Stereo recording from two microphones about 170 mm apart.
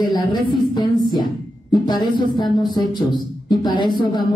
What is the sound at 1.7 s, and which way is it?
A woman's voice, 25° left (ahead or behind).